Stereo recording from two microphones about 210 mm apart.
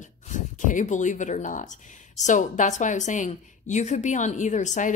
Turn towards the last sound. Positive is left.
turn(degrees=35)  # may be behind; listen again after turning